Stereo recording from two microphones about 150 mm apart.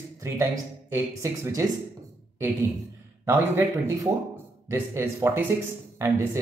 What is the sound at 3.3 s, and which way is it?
Speech, 15° right (ahead or behind).